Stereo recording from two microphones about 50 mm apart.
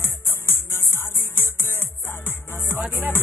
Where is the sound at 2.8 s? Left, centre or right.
Right.